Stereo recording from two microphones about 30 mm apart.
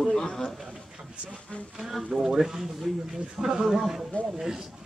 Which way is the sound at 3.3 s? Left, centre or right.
Centre.